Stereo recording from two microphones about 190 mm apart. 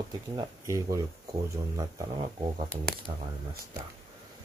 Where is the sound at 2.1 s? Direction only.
30° right (ahead or behind).